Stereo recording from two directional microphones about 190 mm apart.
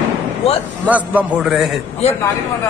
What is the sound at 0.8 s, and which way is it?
Speech, 10° right (ahead or behind).